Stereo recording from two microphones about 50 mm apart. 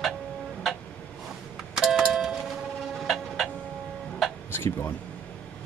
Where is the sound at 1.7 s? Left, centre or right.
Centre.